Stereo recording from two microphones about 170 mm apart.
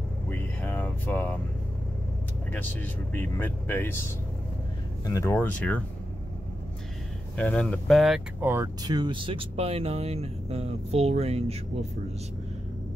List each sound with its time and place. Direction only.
0.3 s a sound: 10° left (ahead or behind)
2.5 s speech: 10° left (ahead or behind)
5.0 s speech: 15° left (ahead or behind)
7.3 s speech: 5° left (ahead or behind)
8.4 s speech: 15° right (ahead or behind); by 11.5 s 40° right (ahead or behind)